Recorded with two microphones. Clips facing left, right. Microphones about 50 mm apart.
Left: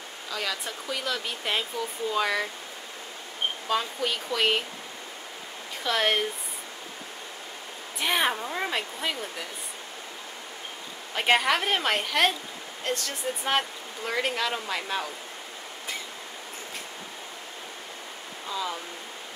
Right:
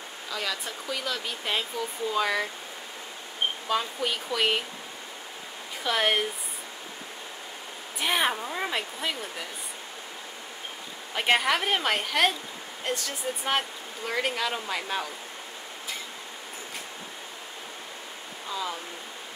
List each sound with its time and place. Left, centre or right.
0.3 s speech: centre
3.6 s speech: centre
5.9 s speech: centre
8.0 s speech: centre
11.1 s speech: centre
18.5 s speech: centre